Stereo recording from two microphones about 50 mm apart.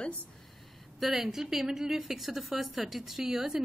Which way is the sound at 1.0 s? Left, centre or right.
Centre.